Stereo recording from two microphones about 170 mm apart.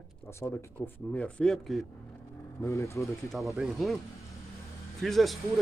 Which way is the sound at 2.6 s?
15° left (ahead or behind).